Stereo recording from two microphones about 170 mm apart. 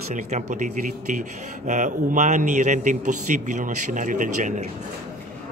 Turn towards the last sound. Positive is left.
turn(degrees=-50)  # may be behind; listen again after turning